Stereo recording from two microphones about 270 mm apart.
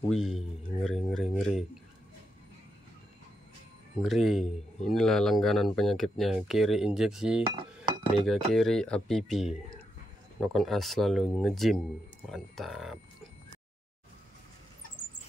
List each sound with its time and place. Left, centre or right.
0.1 s speech: centre
4.0 s speech: centre
7.5 s dishes: centre
8.2 s speech: centre